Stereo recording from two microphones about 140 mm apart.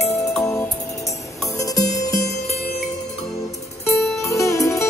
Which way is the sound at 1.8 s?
55° left (ahead or behind).